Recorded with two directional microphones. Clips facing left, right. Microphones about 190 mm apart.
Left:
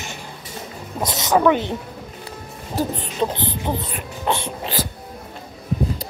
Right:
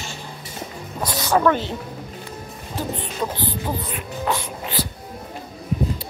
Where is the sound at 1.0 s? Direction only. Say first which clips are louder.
Left 2 dB; 20° left (ahead or behind).